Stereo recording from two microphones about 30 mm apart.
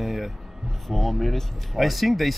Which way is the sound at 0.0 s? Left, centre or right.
Centre.